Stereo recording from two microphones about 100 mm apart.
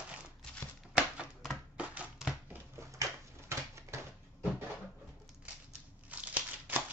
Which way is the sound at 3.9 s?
30° right (ahead or behind).